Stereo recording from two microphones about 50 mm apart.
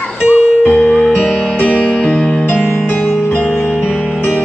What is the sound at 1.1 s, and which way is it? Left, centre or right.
Music, left.